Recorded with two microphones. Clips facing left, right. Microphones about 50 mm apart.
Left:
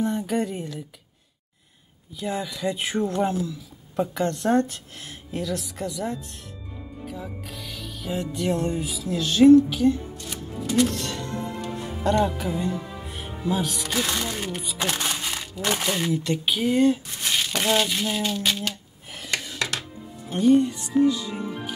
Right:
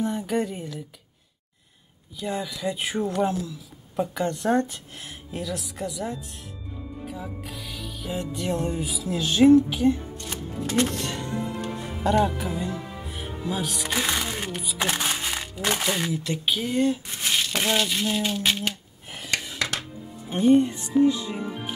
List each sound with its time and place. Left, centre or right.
0.0 s speech: centre
2.1 s speech: centre
12.0 s speech: centre
13.8 s speech: centre
14.5 s speech: centre
17.2 s speech: centre
18.2 s a sound: centre
20.2 s speech: right